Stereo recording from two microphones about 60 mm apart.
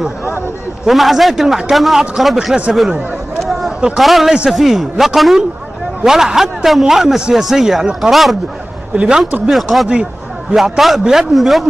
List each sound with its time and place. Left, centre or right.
0.8 s a man's voice: centre
4.0 s a man's voice: centre
8.9 s speech: right
9.5 s a man's voice: centre